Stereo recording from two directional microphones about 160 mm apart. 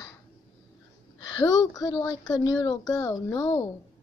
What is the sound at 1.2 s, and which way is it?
Speech, 20° left (ahead or behind).